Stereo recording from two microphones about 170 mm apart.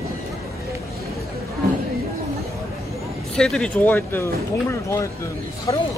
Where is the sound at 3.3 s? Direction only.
5° left (ahead or behind).